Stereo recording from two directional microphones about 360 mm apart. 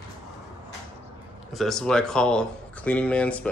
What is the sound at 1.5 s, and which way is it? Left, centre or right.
Speech, centre.